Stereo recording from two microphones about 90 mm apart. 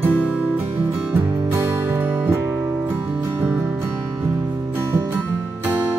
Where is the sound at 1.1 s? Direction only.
25° right (ahead or behind).